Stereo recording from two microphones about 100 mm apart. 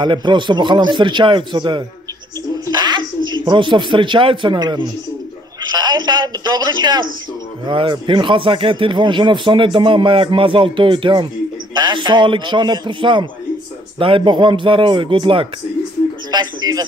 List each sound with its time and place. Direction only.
0.0 s a man's voice: 50° right (ahead or behind)
2.6 s a sound: 45° right (ahead or behind)
3.3 s a man's voice: 50° right (ahead or behind)
16.3 s a man's voice: 45° right (ahead or behind)